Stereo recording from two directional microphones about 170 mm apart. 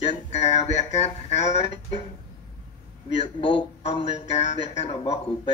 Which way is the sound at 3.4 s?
30° left (ahead or behind).